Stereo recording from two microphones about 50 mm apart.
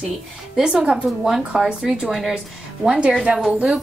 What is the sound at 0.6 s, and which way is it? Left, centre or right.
Speech, centre.